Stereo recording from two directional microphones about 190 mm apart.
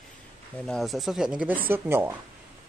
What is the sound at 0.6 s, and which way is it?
Speech, centre (ahead or behind).